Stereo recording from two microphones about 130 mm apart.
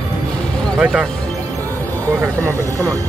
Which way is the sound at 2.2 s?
25° right (ahead or behind).